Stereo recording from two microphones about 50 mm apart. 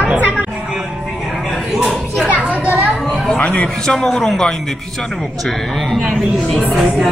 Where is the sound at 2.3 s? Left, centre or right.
Right.